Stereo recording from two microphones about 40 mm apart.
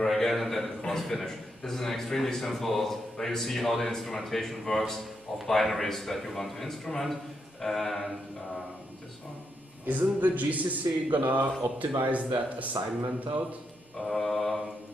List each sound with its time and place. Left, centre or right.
0.0 s a man's voice: centre
9.8 s a man's voice: right
13.9 s a man's voice: centre